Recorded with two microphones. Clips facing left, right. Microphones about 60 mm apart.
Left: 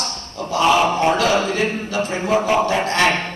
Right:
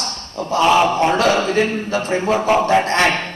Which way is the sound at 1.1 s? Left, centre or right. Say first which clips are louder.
Right 2 dB; right.